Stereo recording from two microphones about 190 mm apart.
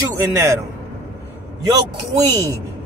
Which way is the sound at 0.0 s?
15° right (ahead or behind).